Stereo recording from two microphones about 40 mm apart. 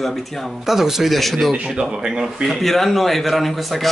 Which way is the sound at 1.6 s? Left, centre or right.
Centre.